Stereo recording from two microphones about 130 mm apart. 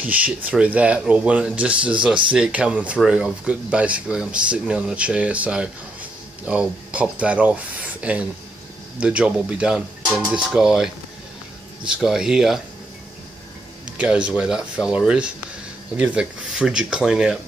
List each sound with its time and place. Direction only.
0.0 s speech: 10° right (ahead or behind)
13.9 s speech: 10° right (ahead or behind)